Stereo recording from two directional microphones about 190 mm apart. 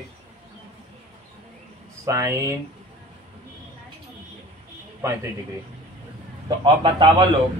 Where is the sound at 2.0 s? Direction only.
15° right (ahead or behind).